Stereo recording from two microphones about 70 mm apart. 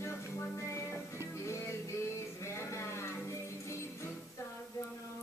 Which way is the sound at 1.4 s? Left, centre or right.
Left.